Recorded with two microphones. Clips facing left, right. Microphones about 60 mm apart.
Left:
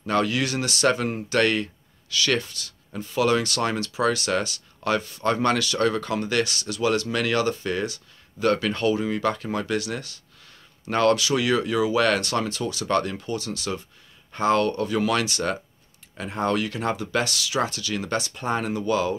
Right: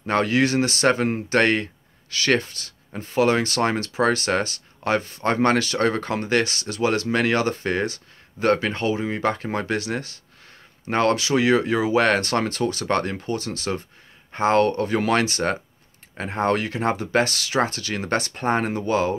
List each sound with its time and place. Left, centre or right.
0.0 s speech: right